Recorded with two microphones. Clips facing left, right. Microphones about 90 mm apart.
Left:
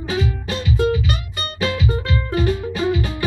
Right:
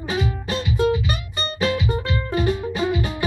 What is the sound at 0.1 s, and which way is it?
Music, 15° right (ahead or behind).